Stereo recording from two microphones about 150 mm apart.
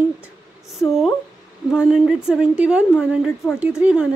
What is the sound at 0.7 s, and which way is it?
Speech, centre (ahead or behind).